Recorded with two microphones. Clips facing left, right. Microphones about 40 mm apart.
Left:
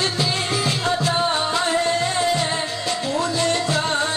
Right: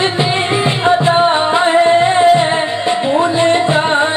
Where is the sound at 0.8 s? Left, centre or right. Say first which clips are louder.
Right 12 dB; right.